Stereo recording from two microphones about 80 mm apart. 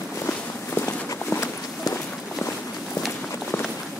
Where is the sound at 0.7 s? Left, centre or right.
Left.